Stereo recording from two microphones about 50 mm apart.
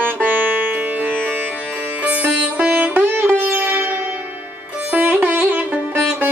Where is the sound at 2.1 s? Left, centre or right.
Right.